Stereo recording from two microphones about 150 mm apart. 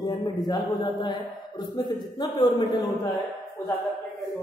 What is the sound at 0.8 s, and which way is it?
A man's voice, 30° left (ahead or behind).